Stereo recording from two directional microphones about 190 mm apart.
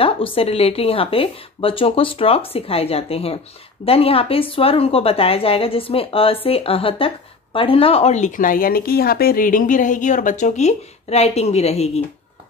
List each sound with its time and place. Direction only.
0.0 s a woman's voice: 30° left (ahead or behind)